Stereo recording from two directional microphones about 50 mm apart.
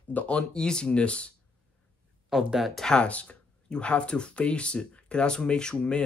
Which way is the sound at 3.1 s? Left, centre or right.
Left.